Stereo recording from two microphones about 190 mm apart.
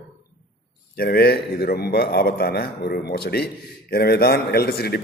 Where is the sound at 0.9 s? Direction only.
55° left (ahead or behind).